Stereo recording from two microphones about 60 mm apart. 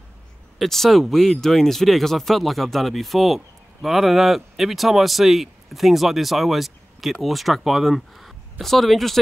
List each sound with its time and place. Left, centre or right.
0.6 s speech: centre